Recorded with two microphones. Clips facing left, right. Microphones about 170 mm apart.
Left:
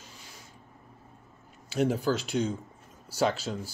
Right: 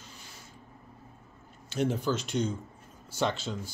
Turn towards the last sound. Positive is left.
turn(degrees=5)  # may be behind; listen again after turning